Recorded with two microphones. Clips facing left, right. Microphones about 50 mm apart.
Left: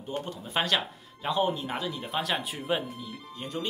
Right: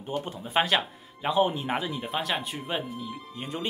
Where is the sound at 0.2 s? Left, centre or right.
Right.